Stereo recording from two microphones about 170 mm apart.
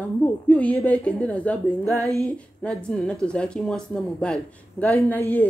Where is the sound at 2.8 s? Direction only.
5° left (ahead or behind).